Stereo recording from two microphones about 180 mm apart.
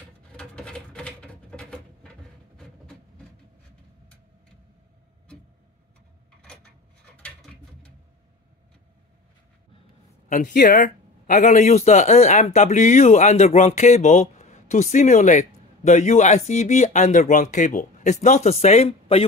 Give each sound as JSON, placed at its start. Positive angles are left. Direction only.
{"t": 0.3, "sound": "rodents", "side_deg": 5}
{"t": 6.4, "sound": "filing", "side_deg": 5}
{"t": 10.3, "sound": "speech", "side_deg": 45}